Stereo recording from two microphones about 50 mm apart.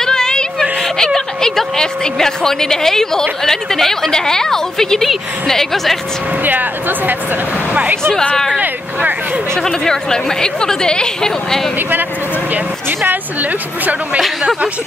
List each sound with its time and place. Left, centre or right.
0.0 s a woman's voice: centre
6.4 s a woman's voice: right
9.5 s a woman's voice: centre
13.0 s a woman's voice: right